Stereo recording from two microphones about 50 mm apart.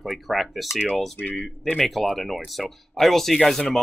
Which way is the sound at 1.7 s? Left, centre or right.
Centre.